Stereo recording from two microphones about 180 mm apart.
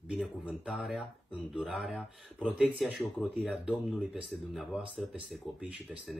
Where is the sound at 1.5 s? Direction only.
Centre (ahead or behind).